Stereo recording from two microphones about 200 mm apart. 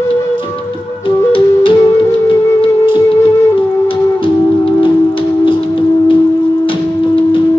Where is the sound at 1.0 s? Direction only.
25° left (ahead or behind).